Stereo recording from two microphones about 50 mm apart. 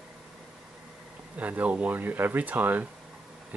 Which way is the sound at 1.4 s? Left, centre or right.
Right.